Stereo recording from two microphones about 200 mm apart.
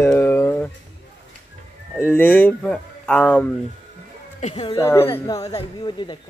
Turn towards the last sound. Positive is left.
turn(degrees=25)  # may be behind; listen again after turning